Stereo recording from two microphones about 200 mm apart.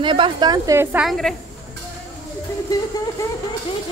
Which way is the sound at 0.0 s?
25° right (ahead or behind).